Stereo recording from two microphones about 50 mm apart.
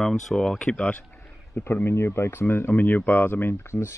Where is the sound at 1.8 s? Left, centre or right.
Left.